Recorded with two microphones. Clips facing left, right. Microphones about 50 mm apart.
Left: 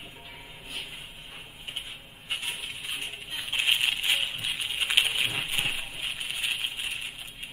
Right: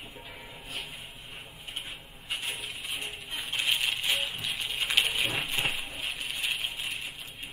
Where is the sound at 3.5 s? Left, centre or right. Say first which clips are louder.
Left 3 dB; left.